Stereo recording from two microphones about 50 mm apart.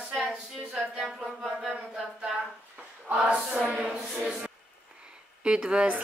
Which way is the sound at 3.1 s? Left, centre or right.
Right.